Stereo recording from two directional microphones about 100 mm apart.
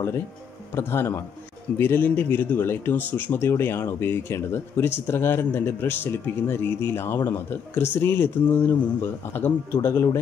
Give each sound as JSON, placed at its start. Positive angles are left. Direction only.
{"t": 0.7, "sound": "speech", "side_deg": 25}